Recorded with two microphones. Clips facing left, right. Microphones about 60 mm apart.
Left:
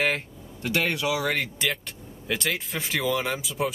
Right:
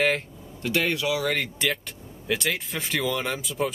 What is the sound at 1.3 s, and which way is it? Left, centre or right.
Speech, centre.